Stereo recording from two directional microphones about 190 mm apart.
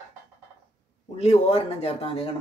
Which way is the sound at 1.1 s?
35° left (ahead or behind).